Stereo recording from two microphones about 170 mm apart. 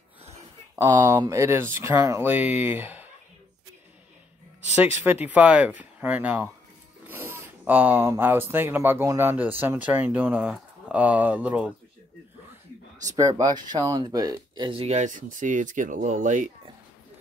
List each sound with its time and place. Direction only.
0.7 s speech: 20° right (ahead or behind)
4.7 s speech: 10° right (ahead or behind)
13.0 s speech: 20° right (ahead or behind); by 16.4 s 45° right (ahead or behind)